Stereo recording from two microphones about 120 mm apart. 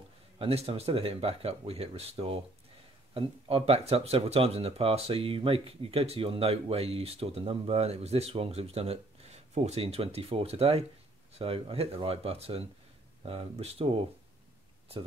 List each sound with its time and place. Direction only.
0.4 s speech: 55° right (ahead or behind)